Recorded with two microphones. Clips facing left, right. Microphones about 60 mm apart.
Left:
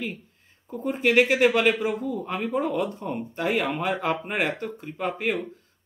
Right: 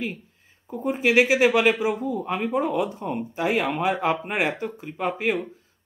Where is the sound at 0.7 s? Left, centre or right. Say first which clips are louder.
Right 1 dB; centre.